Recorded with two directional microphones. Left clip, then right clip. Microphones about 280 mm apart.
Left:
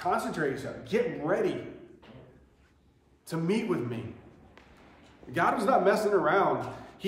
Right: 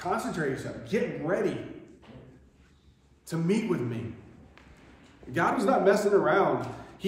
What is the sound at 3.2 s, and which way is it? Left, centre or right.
Speech, centre.